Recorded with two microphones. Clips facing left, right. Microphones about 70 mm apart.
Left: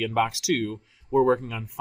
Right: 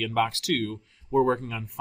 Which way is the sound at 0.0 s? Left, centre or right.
Centre.